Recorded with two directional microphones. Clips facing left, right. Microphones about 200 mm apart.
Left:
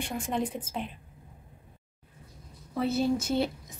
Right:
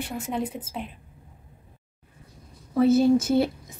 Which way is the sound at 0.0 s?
5° right (ahead or behind).